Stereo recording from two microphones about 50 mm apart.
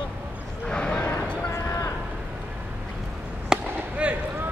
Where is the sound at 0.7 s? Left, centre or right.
Centre.